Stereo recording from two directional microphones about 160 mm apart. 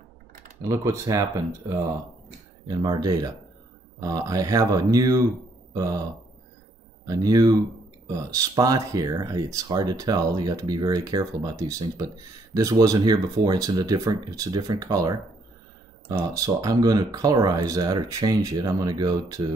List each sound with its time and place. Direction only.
0.7 s speech: 20° right (ahead or behind)
2.7 s speech: 25° right (ahead or behind)
7.1 s speech: 25° right (ahead or behind)